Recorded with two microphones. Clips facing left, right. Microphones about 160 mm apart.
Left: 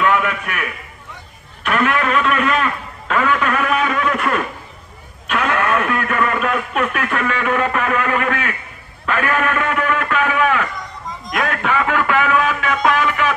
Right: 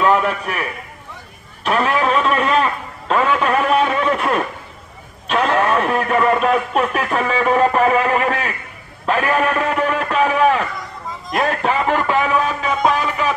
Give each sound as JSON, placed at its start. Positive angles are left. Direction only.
{"t": 0.0, "sound": "a man's voice", "side_deg": -35}
{"t": 5.3, "sound": "speech", "side_deg": -35}
{"t": 9.0, "sound": "a sound", "side_deg": -35}